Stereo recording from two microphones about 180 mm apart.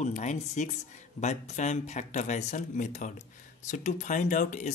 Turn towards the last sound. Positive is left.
turn(degrees=45)  # may be behind; listen again after turning